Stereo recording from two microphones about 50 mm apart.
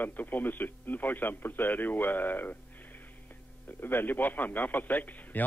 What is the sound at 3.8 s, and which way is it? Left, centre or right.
Speech, left.